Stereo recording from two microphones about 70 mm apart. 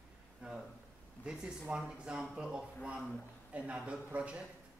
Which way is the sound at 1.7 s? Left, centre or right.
Centre.